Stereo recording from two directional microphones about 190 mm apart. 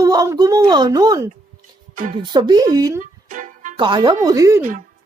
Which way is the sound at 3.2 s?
45° right (ahead or behind).